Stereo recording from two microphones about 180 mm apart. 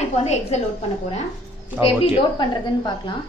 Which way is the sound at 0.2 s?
35° left (ahead or behind).